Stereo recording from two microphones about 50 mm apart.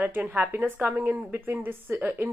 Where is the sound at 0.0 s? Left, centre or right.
Right.